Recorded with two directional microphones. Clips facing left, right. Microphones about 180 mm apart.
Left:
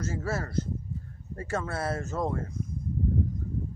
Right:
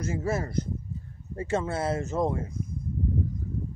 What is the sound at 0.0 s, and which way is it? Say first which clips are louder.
Speech: right 3 dB; 15° right (ahead or behind).